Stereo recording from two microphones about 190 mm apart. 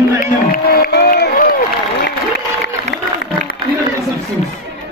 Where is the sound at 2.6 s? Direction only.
60° left (ahead or behind).